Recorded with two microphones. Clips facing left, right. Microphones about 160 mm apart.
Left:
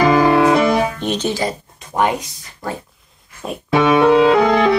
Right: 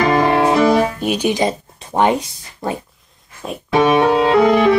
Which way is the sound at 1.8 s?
30° right (ahead or behind).